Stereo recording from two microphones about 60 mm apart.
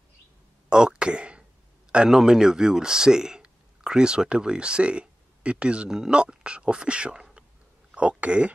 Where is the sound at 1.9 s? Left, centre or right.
Centre.